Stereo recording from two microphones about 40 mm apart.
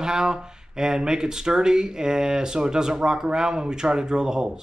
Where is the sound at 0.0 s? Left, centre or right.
Centre.